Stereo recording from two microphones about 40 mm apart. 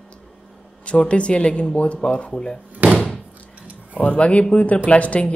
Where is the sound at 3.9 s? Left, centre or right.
Left.